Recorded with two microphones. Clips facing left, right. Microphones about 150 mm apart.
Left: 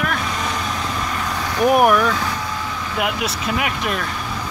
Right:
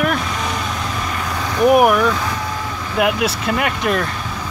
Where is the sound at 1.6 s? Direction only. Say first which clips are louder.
Right 2 dB; 5° right (ahead or behind).